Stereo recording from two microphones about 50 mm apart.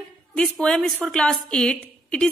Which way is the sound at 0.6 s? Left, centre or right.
Centre.